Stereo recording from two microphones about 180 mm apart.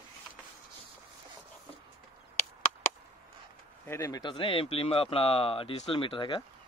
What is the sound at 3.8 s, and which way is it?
Speech, 15° left (ahead or behind).